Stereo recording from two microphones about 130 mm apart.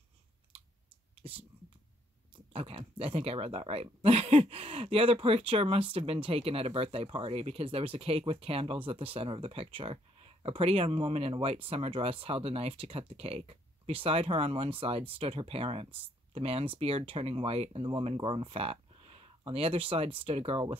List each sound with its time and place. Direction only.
1.2 s speech: 45° right (ahead or behind)
2.5 s speech: 45° right (ahead or behind)